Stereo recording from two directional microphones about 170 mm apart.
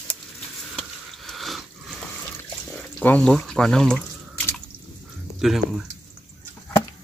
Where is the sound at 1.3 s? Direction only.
Centre (ahead or behind).